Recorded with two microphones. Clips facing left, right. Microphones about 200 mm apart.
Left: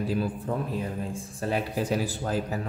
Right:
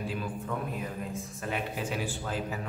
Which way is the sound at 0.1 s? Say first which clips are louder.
Left 6 dB; 35° left (ahead or behind).